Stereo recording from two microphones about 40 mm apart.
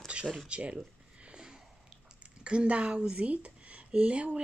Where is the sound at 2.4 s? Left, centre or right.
Right.